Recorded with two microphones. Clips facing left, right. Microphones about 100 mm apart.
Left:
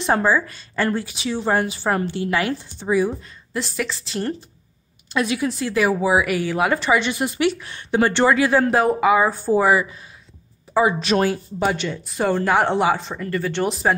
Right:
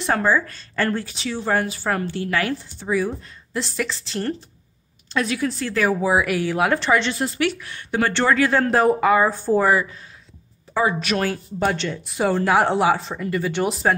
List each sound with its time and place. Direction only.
0.0 s a woman's voice: 20° left (ahead or behind)
0.3 s speech: 10° left (ahead or behind)
3.5 s speech: 5° left (ahead or behind); by 11.2 s 25° left (ahead or behind)
11.6 s speech: 5° left (ahead or behind)